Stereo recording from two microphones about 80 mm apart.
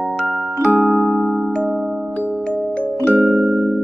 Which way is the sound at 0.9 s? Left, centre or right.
Centre.